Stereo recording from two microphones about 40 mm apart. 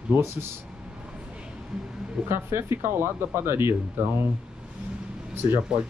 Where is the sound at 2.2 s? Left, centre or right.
Right.